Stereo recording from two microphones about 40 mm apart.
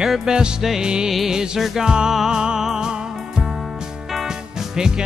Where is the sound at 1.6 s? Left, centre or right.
Centre.